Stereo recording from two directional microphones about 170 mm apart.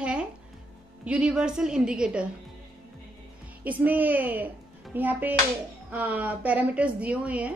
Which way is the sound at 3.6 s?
10° right (ahead or behind).